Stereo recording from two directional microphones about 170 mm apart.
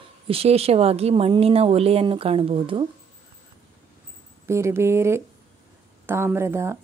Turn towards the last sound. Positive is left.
turn(degrees=-15)  # may be behind; listen again after turning